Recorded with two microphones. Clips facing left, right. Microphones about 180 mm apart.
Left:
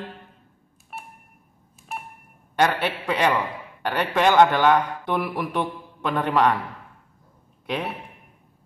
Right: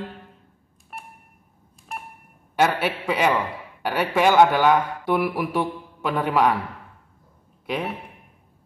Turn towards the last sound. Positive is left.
turn(degrees=-5)  # may be behind; listen again after turning